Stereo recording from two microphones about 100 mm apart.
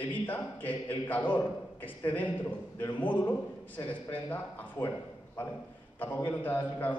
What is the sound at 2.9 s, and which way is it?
A man's voice, 15° left (ahead or behind).